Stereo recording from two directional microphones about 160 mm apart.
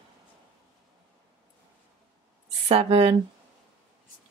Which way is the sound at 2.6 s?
40° right (ahead or behind).